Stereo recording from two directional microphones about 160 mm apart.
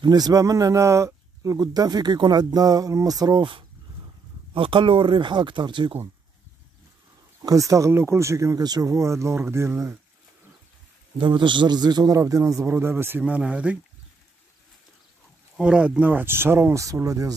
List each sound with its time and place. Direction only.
0.0 s speech: 25° right (ahead or behind)
7.4 s speech: 20° right (ahead or behind)
11.1 s speech: 30° right (ahead or behind); by 13.7 s 10° right (ahead or behind)
15.5 s speech: 5° right (ahead or behind); by 17.4 s 20° right (ahead or behind)